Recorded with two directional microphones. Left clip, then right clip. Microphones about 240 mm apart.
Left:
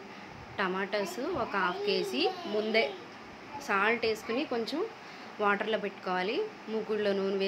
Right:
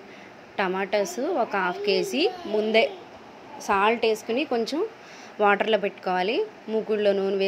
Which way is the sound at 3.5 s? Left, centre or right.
Right.